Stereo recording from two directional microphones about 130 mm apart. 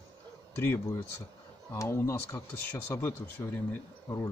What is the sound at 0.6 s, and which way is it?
Speech, 20° left (ahead or behind).